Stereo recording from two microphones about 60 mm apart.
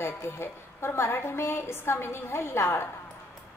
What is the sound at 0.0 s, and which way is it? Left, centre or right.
A woman's voice, left.